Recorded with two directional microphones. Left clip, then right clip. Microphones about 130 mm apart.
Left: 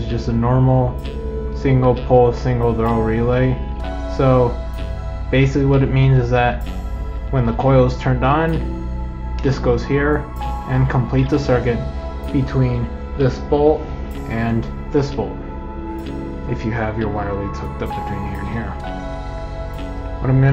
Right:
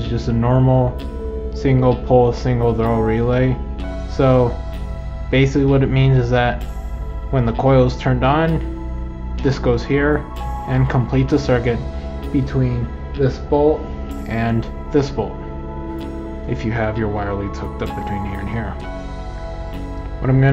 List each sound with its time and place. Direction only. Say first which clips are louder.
0.1 s speech: right 1 dB; 25° right (ahead or behind)
16.4 s speech: right 2 dB; 30° right (ahead or behind)
20.2 s speech: right 1 dB; 35° right (ahead or behind)